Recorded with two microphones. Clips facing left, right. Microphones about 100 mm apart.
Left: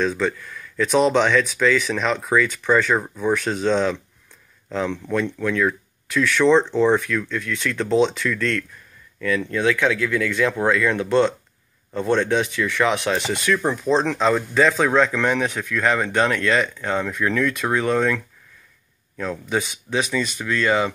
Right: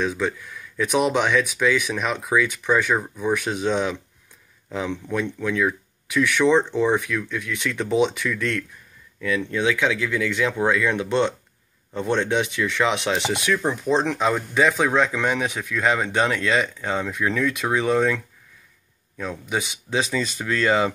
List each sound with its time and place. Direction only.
0.0 s speech: 15° right (ahead or behind)
19.5 s speech: 15° right (ahead or behind)
19.9 s speech: 30° right (ahead or behind)